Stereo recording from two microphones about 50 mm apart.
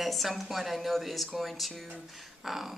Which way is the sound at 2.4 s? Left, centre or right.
Centre.